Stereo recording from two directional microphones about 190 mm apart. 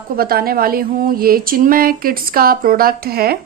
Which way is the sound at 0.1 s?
50° right (ahead or behind).